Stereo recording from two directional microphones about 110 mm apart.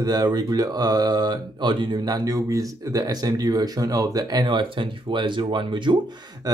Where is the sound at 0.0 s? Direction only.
35° right (ahead or behind).